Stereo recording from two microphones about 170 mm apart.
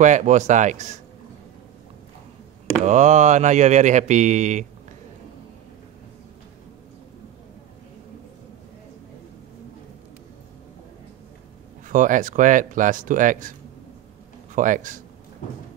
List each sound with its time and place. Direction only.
0.0 s speech: 45° right (ahead or behind)
2.8 s speech: 45° right (ahead or behind)
11.9 s speech: 50° right (ahead or behind)